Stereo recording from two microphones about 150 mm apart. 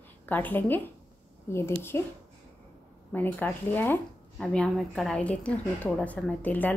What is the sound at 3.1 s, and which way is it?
A woman's voice, 10° left (ahead or behind).